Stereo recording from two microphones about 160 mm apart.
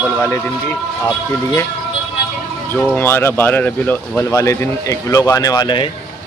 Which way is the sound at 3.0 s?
15° left (ahead or behind).